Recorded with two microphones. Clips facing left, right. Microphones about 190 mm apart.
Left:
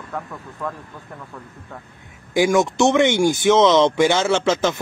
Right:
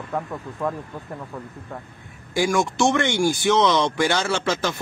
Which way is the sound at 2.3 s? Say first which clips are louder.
Left 4 dB; 20° left (ahead or behind).